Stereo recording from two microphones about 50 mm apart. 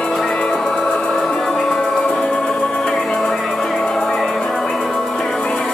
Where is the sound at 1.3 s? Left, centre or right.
Centre.